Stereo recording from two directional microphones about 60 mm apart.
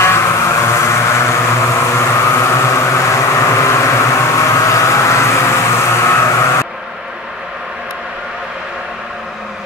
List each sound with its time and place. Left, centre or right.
0.0 s vehicle: left